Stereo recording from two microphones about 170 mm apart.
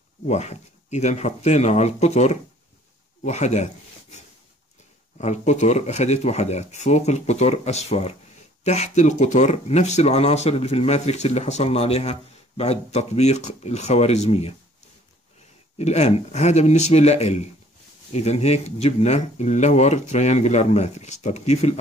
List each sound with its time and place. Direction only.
0.3 s speech: 40° left (ahead or behind)
15.8 s speech: 40° left (ahead or behind)